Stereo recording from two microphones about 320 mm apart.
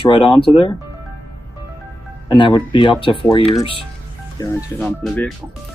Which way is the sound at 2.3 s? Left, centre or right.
Centre.